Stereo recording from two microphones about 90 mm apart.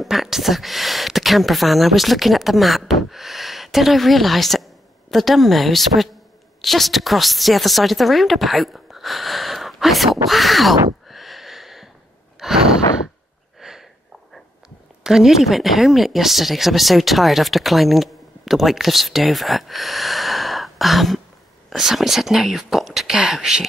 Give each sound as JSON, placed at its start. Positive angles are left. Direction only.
{"t": 0.0, "sound": "a woman's voice", "side_deg": -5}
{"t": 12.4, "sound": "sigh", "side_deg": -5}
{"t": 13.6, "sound": "a sound", "side_deg": -5}
{"t": 15.0, "sound": "speech", "side_deg": -5}